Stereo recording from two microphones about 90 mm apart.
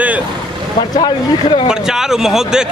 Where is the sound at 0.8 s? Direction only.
55° left (ahead or behind).